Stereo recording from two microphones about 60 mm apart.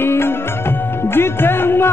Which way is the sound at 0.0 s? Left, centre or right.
Left.